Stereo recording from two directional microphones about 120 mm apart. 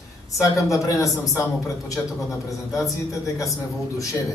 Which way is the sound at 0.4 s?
25° left (ahead or behind).